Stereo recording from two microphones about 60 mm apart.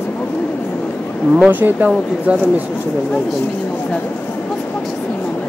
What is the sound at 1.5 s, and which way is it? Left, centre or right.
Speech, right.